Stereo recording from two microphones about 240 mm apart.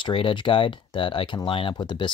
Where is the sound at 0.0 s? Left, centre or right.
Left.